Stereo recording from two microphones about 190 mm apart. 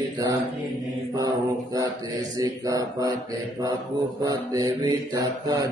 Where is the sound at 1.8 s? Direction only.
20° right (ahead or behind).